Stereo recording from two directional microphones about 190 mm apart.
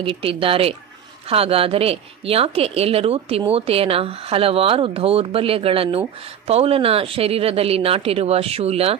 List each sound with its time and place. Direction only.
0.0 s speech: 30° right (ahead or behind)